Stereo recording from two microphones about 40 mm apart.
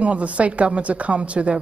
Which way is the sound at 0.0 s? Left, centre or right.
Right.